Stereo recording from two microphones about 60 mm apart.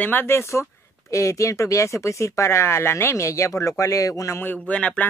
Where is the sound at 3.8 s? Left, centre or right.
Left.